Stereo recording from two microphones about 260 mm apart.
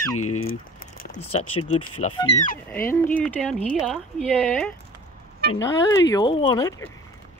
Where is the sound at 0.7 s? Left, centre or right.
Left.